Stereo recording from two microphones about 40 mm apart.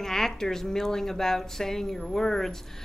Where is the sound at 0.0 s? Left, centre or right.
Centre.